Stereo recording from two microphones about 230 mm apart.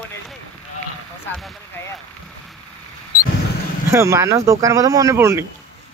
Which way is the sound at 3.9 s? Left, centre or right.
Centre.